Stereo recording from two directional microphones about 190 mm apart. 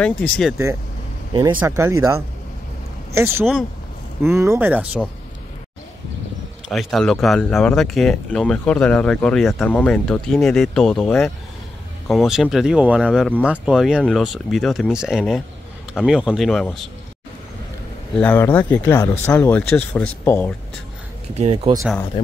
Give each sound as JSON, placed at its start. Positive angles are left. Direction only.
{"t": 0.0, "sound": "speech", "side_deg": 5}
{"t": 1.3, "sound": "speech", "side_deg": -25}
{"t": 6.7, "sound": "speech", "side_deg": 0}
{"t": 12.1, "sound": "speech", "side_deg": 0}
{"t": 18.1, "sound": "speech", "side_deg": 10}
{"t": 21.4, "sound": "speech", "side_deg": -35}
{"t": 22.2, "sound": "speech", "side_deg": 25}